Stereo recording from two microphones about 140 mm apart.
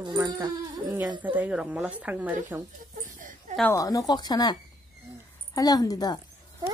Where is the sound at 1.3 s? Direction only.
10° right (ahead or behind).